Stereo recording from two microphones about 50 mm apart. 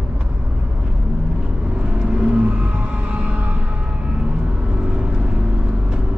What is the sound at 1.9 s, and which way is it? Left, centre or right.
Vehicle, centre.